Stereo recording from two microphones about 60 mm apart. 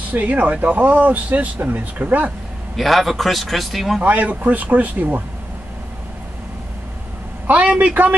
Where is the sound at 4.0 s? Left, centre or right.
Right.